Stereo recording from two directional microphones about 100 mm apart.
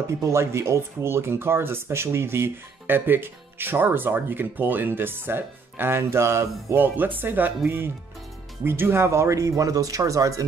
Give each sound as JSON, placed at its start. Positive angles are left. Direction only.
{"t": 0.2, "sound": "speech", "side_deg": -30}